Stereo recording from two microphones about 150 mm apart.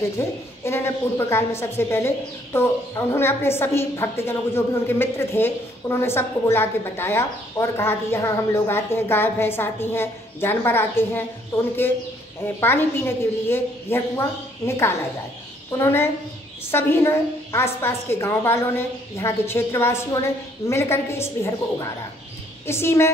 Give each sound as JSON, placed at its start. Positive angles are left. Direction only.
{"t": 0.2, "sound": "a woman's voice", "side_deg": 15}